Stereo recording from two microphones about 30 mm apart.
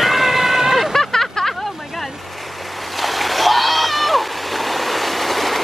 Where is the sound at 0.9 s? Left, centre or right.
Centre.